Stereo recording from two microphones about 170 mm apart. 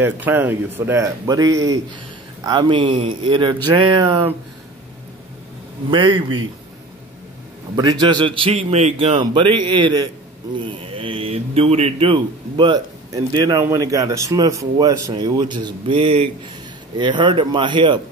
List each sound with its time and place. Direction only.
0.0 s a man's voice: 10° right (ahead or behind); by 4.2 s 25° right (ahead or behind)
5.9 s a man's voice: 30° right (ahead or behind)
7.7 s a man's voice: 25° right (ahead or behind)
9.2 s a man's voice: 30° right (ahead or behind)